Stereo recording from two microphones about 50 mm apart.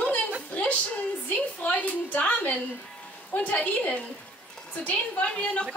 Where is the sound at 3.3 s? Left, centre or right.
Left.